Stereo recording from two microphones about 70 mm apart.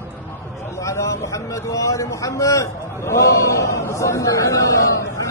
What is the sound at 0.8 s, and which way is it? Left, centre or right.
A man's voice, left.